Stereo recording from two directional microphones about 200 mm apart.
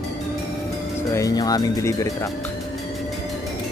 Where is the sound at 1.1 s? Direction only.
15° left (ahead or behind).